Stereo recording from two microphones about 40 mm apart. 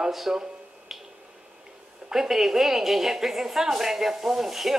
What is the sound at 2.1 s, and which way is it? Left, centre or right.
A woman's voice, centre.